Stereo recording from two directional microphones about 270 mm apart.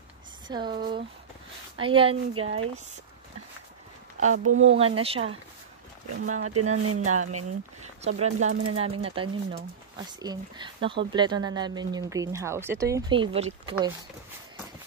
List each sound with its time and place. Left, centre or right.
0.5 s speech: centre
4.5 s speech: right
4.7 s speech: right
6.1 s speech: right
8.0 s speech: right